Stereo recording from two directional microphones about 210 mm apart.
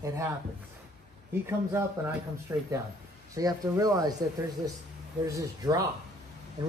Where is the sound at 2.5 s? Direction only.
15° right (ahead or behind).